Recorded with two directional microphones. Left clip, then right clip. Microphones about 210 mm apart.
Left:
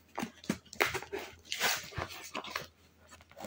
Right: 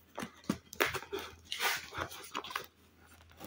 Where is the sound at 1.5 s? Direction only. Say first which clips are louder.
Left 2 dB; 5° left (ahead or behind).